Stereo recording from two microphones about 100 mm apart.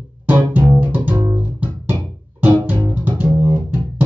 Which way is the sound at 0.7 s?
15° right (ahead or behind).